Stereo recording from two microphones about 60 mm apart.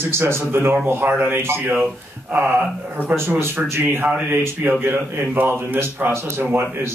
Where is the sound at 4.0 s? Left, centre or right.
Right.